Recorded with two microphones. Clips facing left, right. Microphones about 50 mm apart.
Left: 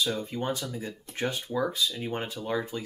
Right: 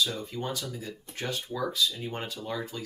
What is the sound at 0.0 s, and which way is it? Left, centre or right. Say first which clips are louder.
Speech: left 2 dB; left.